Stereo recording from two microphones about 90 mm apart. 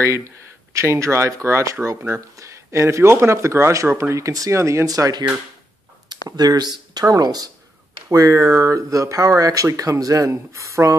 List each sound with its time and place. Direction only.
0.0 s speech: 30° right (ahead or behind)
6.2 s speech: 45° right (ahead or behind)